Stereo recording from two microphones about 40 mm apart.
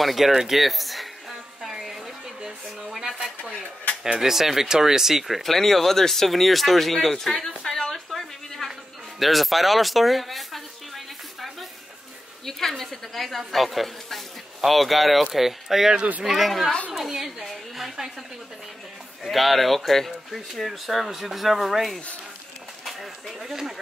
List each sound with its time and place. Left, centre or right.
0.0 s speech: centre
2.4 s a sound: centre
4.0 s speech: centre
8.1 s a sound: centre
9.2 s speech: centre
12.4 s a woman's voice: centre
19.2 s speech: centre